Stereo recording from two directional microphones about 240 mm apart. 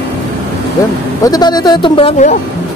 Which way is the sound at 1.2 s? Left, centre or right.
Centre.